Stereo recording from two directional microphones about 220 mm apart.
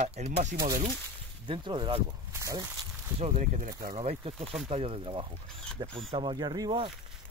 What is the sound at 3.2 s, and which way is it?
Speech, 30° right (ahead or behind).